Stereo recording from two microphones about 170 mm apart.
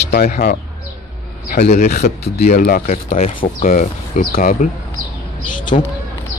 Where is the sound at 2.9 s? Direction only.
40° left (ahead or behind); by 4.5 s 55° left (ahead or behind).